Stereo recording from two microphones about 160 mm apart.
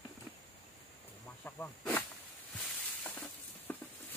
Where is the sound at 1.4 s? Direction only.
10° left (ahead or behind).